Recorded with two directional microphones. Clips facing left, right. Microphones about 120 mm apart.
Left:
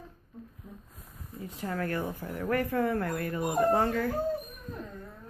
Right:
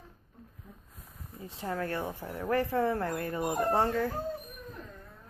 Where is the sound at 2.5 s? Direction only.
25° right (ahead or behind).